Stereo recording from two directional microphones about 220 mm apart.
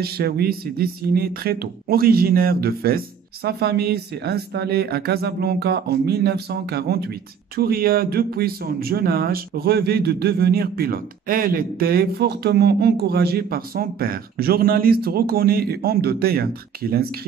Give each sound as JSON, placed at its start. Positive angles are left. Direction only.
{"t": 0.0, "sound": "speech", "side_deg": -45}